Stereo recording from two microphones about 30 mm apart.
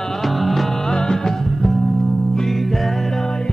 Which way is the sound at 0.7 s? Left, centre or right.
Centre.